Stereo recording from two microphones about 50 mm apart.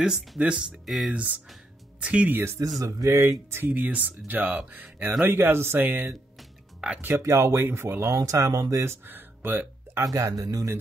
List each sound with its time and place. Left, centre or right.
0.0 s speech: centre
0.4 s speech: right
0.8 s speech: centre
1.1 s speech: right
2.4 s speech: right
2.8 s speech: right
3.6 s speech: right
5.3 s speech: right
5.9 s speech: right
6.8 s speech: right
7.2 s speech: right
7.6 s speech: right
9.0 s speech: right
9.9 s speech: right